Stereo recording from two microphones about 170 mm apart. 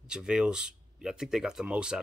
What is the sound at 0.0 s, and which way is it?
Speech, 5° right (ahead or behind).